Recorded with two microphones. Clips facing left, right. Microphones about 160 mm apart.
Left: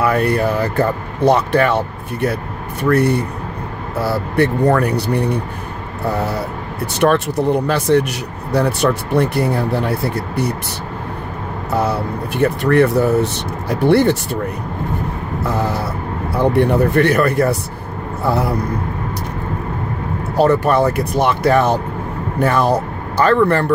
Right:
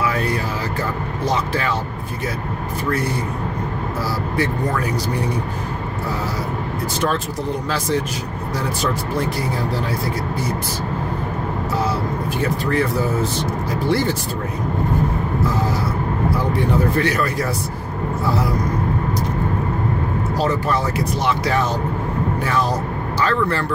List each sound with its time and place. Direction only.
0.0 s speech: 60° left (ahead or behind)
2.8 s speech: 65° left (ahead or behind)
12.4 s speech: 65° left (ahead or behind)
15.4 s speech: 65° left (ahead or behind)
20.3 s speech: 60° left (ahead or behind)